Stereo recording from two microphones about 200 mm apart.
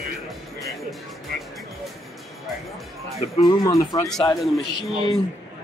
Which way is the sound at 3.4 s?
15° left (ahead or behind).